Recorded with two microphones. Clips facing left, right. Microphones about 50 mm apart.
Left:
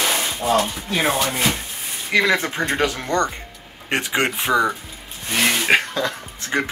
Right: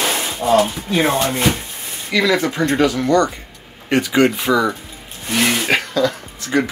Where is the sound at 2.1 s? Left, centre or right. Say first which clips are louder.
Right 2 dB; left.